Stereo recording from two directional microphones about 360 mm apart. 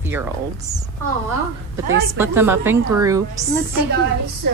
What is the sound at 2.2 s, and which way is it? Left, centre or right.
A woman's voice, centre.